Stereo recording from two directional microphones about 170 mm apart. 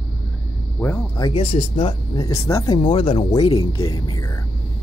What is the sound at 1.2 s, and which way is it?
Speech, 30° left (ahead or behind).